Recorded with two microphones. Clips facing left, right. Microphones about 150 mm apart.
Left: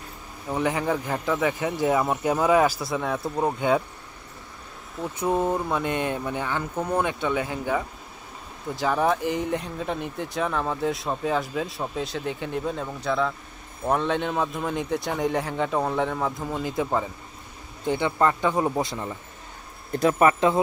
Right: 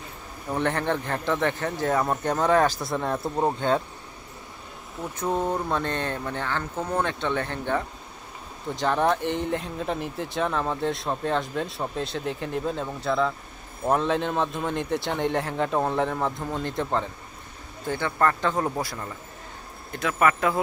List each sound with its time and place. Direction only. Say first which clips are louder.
0.5 s speech: left 1 dB; 5° left (ahead or behind)
5.0 s speech: left 2 dB; 5° left (ahead or behind)
17.8 s speech: left 2 dB; 15° left (ahead or behind)
19.9 s speech: left 4 dB; 35° left (ahead or behind)